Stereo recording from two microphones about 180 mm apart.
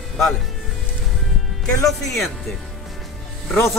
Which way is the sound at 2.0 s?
Centre (ahead or behind).